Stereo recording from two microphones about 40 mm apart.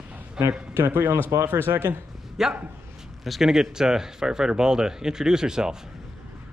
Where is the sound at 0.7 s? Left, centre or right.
Right.